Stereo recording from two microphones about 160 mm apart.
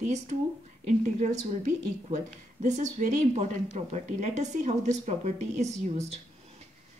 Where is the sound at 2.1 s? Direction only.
50° right (ahead or behind).